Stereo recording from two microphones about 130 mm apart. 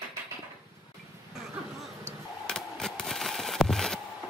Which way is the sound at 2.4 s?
5° left (ahead or behind).